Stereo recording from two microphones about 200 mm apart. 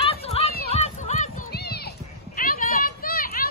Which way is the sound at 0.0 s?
30° left (ahead or behind).